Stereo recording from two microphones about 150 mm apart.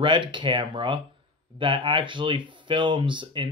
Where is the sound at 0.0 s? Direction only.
35° right (ahead or behind).